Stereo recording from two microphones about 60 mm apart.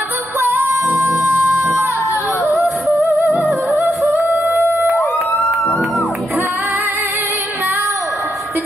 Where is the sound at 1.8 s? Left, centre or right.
Left.